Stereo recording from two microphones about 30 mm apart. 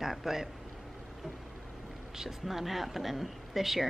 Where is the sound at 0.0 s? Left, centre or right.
Centre.